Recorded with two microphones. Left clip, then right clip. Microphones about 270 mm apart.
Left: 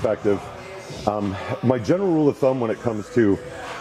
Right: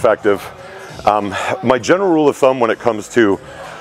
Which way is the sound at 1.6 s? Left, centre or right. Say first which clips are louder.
Right 7 dB; centre.